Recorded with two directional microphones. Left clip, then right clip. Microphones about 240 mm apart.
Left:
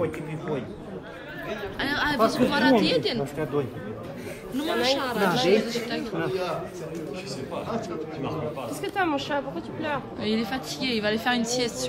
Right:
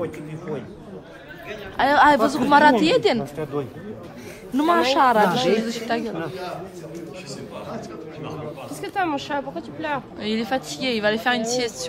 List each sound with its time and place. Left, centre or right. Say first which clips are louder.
1.8 s a woman's voice: right 9 dB; centre
8.8 s a woman's voice: right 2 dB; right
10.2 s a woman's voice: right 4 dB; centre